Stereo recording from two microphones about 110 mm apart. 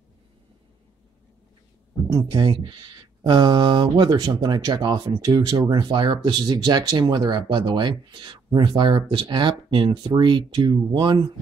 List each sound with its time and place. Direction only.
2.1 s speech: 45° right (ahead or behind)